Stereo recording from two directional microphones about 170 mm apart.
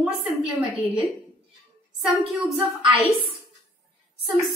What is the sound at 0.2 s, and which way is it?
Speech, 5° right (ahead or behind).